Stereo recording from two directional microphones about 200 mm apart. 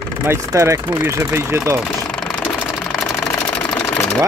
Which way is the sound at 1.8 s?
10° left (ahead or behind).